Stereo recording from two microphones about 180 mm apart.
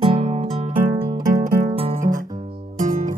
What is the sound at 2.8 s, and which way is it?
Music, 45° right (ahead or behind).